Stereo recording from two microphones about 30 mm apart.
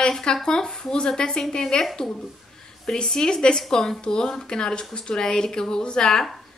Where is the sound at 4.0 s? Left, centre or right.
Left.